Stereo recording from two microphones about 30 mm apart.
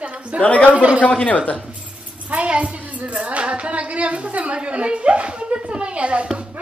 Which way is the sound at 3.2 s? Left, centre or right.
Right.